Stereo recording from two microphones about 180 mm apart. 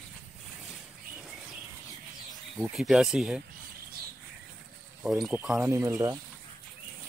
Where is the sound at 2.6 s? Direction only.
5° right (ahead or behind).